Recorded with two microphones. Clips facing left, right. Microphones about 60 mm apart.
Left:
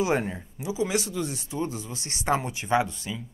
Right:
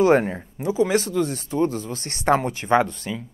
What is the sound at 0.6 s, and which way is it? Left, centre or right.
Speech, right.